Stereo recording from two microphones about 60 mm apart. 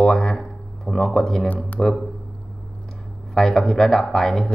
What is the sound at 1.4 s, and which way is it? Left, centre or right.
Speech, left.